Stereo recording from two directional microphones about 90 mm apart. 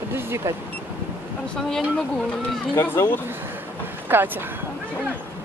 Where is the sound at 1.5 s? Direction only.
5° left (ahead or behind).